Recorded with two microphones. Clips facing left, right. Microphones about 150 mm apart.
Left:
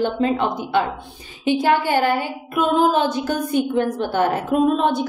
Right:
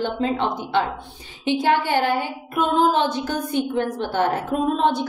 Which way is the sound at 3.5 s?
10° left (ahead or behind).